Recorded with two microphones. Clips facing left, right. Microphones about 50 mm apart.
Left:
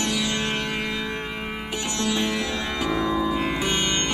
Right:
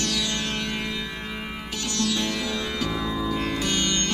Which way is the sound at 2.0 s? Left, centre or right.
Left.